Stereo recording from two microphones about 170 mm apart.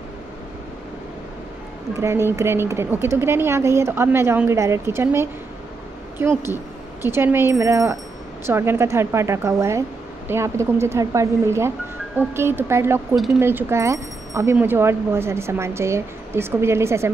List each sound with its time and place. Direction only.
2.0 s speech: 15° right (ahead or behind)